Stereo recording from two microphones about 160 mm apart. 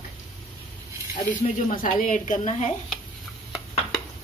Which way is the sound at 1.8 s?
55° left (ahead or behind).